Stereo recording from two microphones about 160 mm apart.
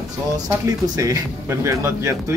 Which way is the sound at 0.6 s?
20° right (ahead or behind).